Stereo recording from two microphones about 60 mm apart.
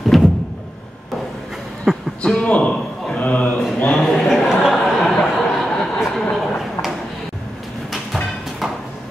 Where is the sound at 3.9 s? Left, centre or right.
Centre.